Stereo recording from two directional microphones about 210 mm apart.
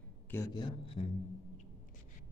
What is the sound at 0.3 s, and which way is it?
Speech, 15° left (ahead or behind).